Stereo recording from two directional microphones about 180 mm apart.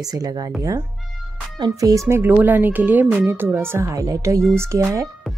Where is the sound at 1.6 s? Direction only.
20° right (ahead or behind).